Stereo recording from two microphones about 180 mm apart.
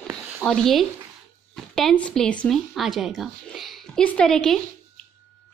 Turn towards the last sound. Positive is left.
turn(degrees=5)  # may be behind; listen again after turning